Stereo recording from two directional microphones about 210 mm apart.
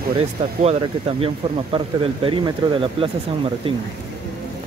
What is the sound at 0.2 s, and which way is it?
Speech, 30° right (ahead or behind).